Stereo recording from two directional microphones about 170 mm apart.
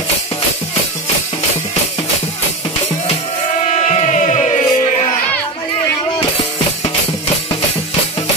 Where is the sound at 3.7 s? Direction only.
45° left (ahead or behind).